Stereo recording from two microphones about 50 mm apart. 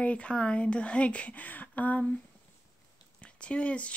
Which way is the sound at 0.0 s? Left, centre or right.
Left.